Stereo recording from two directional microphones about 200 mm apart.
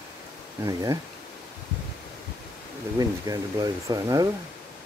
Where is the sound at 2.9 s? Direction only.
20° right (ahead or behind).